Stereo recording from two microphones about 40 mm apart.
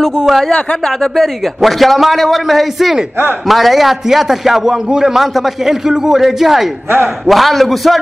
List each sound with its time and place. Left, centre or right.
0.5 s speech: left
0.8 s a man's voice: centre
5.2 s a man's voice: centre